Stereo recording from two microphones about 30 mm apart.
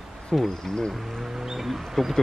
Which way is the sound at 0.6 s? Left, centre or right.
Left.